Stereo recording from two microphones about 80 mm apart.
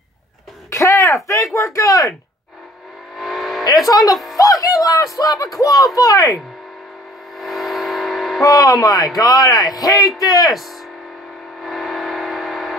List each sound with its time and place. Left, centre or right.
0.7 s a sound: left
3.2 s vehicle: centre
3.8 s speech: left
7.3 s a sound: centre
8.4 s speech: left
11.6 s vehicle: centre